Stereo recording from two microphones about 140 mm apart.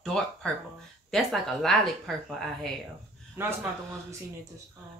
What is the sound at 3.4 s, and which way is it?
Speech, 15° right (ahead or behind).